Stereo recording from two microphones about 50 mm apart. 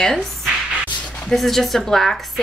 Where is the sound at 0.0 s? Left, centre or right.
Centre.